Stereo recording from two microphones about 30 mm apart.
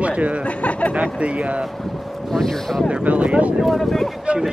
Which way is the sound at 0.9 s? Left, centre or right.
Right.